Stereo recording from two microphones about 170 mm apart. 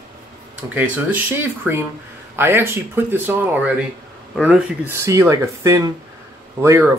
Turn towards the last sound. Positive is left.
turn(degrees=-15)  # may be behind; listen again after turning